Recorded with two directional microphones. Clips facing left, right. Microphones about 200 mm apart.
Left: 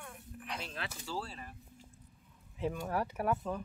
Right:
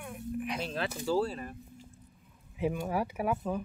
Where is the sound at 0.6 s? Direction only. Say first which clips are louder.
Right 9 dB; 35° right (ahead or behind).